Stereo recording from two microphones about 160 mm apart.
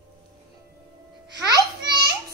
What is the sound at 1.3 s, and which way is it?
Music, 25° right (ahead or behind).